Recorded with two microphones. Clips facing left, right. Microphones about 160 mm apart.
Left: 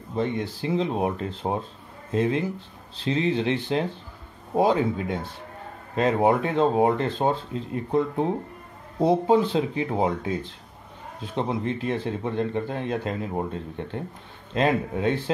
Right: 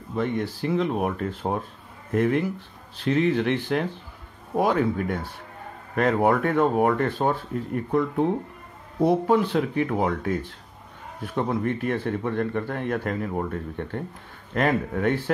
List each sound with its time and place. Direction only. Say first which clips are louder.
0.1 s speech: right 1 dB; 20° left (ahead or behind)